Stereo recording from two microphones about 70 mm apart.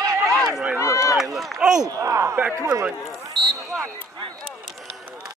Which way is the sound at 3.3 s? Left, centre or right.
Centre.